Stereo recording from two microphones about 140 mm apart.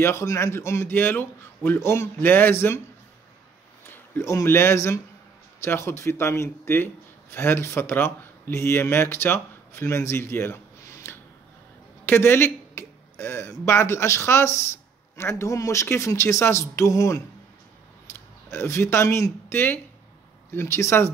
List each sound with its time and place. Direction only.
0.0 s a man's voice: 20° left (ahead or behind)
3.8 s speech: 20° left (ahead or behind)
18.1 s a sound: 15° left (ahead or behind)
18.5 s speech: 20° left (ahead or behind)